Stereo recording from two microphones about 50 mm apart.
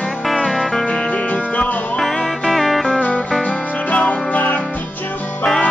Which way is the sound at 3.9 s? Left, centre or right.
Left.